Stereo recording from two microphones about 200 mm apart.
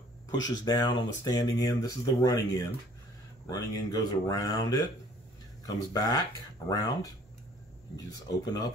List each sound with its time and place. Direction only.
0.4 s speech: 20° left (ahead or behind)
8.1 s speech: 20° left (ahead or behind)